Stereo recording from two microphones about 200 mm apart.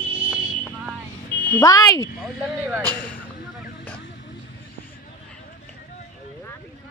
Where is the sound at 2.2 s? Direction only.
10° right (ahead or behind).